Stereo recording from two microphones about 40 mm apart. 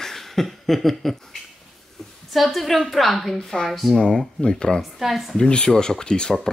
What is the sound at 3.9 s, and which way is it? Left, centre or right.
Speech, centre.